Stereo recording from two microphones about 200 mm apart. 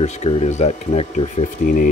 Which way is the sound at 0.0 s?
35° left (ahead or behind).